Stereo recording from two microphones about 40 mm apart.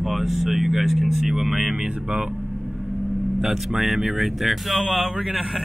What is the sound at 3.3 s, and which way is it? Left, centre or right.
Speech, centre.